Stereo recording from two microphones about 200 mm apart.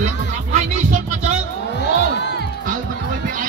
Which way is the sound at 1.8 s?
60° left (ahead or behind).